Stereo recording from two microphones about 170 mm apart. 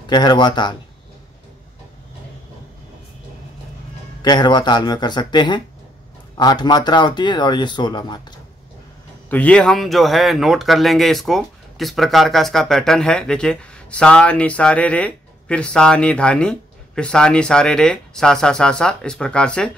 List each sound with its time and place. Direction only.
0.0 s speech: 25° left (ahead or behind)
4.2 s speech: 25° left (ahead or behind)
9.3 s speech: 5° left (ahead or behind)